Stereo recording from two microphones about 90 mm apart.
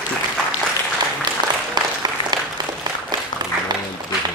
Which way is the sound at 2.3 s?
50° right (ahead or behind).